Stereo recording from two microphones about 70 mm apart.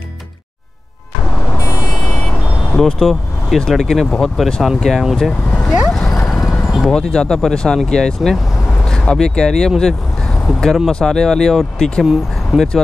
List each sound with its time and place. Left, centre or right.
1.6 s vehicle: left
2.0 s vehicle: centre
2.7 s speech: centre
5.9 s vehicle: centre
6.9 s speech: centre